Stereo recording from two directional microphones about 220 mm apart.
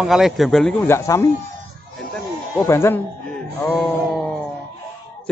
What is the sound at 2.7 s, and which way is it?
A man's voice, 10° left (ahead or behind).